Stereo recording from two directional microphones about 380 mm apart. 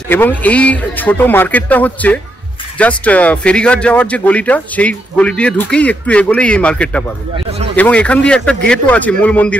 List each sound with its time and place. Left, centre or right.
0.1 s speech: centre
7.3 s a sound: centre
7.7 s speech: centre